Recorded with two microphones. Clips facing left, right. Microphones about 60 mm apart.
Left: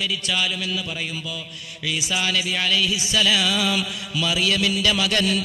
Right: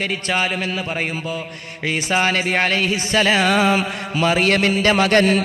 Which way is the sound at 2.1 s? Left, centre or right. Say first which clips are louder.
Right 7 dB; right.